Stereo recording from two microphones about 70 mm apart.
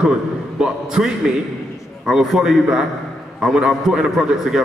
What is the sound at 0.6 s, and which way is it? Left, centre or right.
Speech, centre.